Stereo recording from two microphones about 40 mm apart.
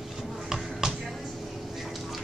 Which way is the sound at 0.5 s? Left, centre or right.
Centre.